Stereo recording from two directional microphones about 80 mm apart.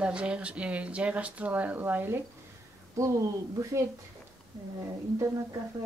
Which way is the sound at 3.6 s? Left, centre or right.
Right.